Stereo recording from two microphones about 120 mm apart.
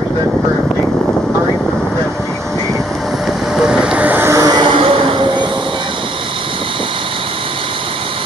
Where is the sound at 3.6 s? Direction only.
5° right (ahead or behind); by 5.4 s 45° right (ahead or behind).